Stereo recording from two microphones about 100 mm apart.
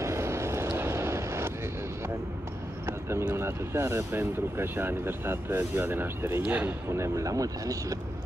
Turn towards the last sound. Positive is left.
turn(degrees=-35)  # may be behind; listen again after turning